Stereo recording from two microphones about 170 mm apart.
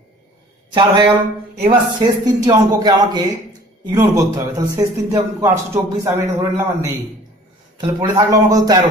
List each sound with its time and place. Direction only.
0.7 s a man's voice: 25° right (ahead or behind)